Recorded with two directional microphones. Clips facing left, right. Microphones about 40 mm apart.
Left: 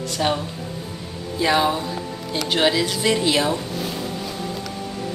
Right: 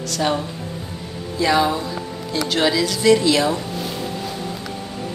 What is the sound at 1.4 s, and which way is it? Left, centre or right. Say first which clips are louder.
A woman's voice: right 1 dB; centre.